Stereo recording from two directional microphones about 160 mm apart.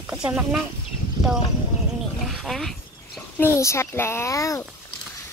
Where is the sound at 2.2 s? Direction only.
Centre (ahead or behind).